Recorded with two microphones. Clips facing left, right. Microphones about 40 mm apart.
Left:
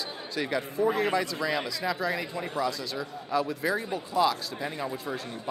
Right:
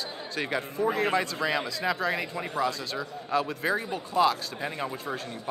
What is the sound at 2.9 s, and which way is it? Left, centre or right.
A man's voice, right.